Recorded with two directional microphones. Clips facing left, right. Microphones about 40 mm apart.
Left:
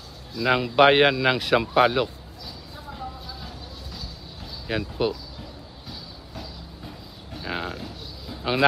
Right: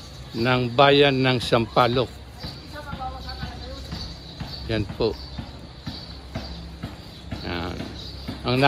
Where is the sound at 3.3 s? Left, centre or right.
Right.